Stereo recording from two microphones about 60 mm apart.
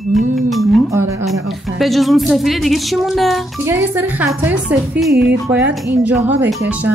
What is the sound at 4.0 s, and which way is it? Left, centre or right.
Speech, right.